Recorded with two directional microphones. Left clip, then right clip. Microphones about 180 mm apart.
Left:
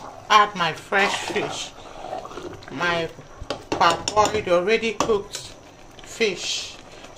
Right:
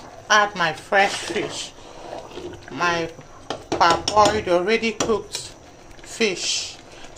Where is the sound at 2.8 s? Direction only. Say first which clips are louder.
Right 1 dB; 5° right (ahead or behind).